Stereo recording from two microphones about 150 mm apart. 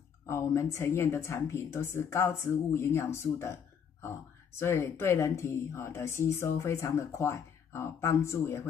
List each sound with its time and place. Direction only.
0.3 s a woman's voice: 20° left (ahead or behind)
4.6 s a woman's voice: 15° left (ahead or behind)